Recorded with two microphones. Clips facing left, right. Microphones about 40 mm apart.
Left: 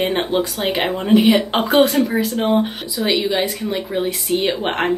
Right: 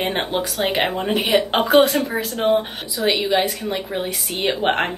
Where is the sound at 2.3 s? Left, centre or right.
Centre.